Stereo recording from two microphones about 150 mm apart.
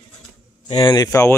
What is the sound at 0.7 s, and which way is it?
Speech, 30° left (ahead or behind).